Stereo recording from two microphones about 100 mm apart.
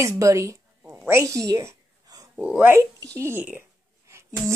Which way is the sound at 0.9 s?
25° right (ahead or behind).